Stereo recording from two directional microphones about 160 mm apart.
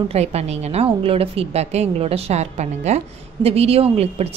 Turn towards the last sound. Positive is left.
turn(degrees=-40)  # may be behind; listen again after turning